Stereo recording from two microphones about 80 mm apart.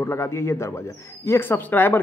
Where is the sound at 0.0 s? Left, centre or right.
Left.